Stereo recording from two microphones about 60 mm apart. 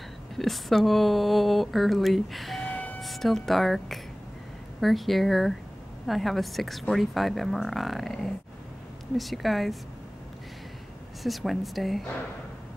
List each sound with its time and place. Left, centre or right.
0.4 s speech: centre
2.6 s vehicle: left
3.0 s speech: centre
11.2 s speech: centre